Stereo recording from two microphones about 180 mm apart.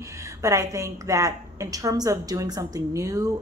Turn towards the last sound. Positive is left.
turn(degrees=-20)  # may be behind; listen again after turning